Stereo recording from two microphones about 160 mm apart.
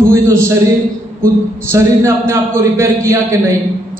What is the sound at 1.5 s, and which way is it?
A man's voice, 15° right (ahead or behind).